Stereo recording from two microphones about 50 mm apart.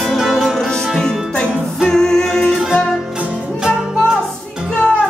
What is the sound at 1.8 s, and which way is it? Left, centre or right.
Music, centre.